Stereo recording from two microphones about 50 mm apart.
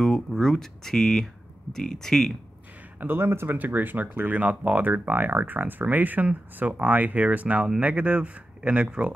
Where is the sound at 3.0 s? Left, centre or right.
Right.